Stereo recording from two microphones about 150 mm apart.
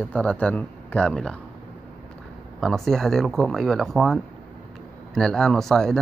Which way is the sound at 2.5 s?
Centre (ahead or behind).